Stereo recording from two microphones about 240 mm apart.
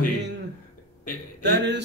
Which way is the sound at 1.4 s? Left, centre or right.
Right.